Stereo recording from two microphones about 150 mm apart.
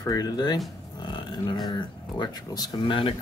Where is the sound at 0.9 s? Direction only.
30° left (ahead or behind).